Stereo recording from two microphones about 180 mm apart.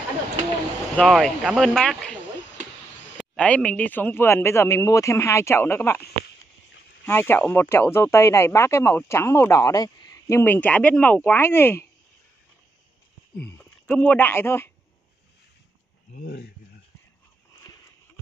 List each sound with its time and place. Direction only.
0.9 s speech: centre (ahead or behind)
3.2 s speech: 5° left (ahead or behind)
7.1 s speech: 10° left (ahead or behind)
13.4 s speech: 10° left (ahead or behind)
16.2 s speech: 65° left (ahead or behind)